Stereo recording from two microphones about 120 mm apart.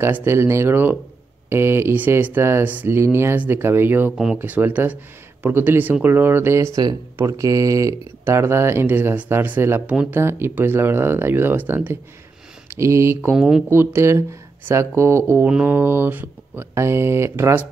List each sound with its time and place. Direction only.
0.0 s speech: 20° right (ahead or behind)
13.3 s speech: 5° right (ahead or behind)
13.7 s speech: 20° right (ahead or behind)